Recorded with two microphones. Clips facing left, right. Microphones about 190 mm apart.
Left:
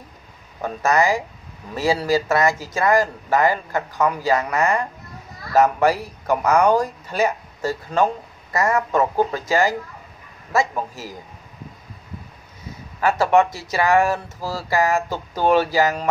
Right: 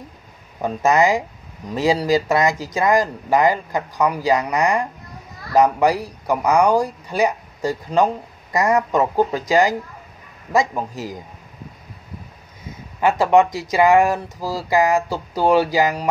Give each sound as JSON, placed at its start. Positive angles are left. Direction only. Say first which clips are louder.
{"t": 0.6, "sound": "speech", "louder": "right 3 dB", "side_deg": -20}
{"t": 13.0, "sound": "speech", "louder": "right 2 dB", "side_deg": -15}